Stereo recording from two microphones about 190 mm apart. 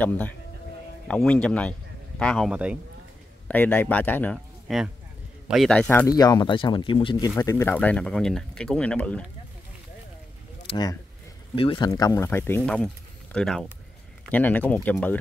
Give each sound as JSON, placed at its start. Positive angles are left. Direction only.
{"t": 0.0, "sound": "speech", "side_deg": 10}
{"t": 3.4, "sound": "a man's voice", "side_deg": 10}
{"t": 10.7, "sound": "speech", "side_deg": 20}